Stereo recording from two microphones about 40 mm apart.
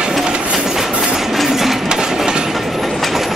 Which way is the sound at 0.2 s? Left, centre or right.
Right.